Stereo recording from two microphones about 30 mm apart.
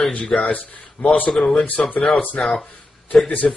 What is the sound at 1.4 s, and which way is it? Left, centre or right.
Speech, left.